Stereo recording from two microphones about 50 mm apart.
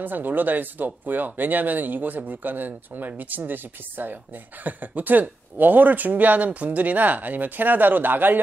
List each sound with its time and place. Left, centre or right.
0.0 s speech: right